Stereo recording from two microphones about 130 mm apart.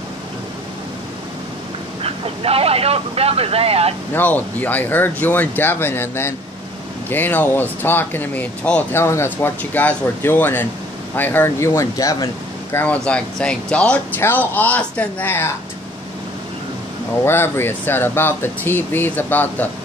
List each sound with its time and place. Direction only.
2.0 s speech: 50° right (ahead or behind)
4.1 s speech: 15° left (ahead or behind)
12.7 s speech: 10° left (ahead or behind)
17.2 s speech: 20° left (ahead or behind)